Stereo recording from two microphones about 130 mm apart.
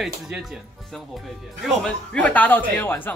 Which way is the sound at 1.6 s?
5° left (ahead or behind).